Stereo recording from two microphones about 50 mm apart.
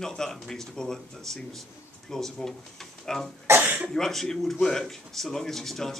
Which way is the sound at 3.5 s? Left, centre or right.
Right.